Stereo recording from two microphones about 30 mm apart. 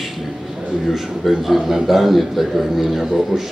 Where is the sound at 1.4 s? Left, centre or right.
Centre.